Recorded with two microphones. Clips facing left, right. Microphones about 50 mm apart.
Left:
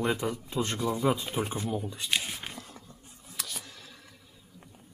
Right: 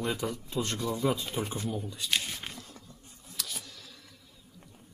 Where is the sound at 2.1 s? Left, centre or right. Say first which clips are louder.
Even; centre.